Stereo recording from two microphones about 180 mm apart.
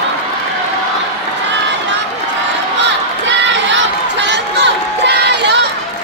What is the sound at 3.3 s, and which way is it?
Crowd, 85° right.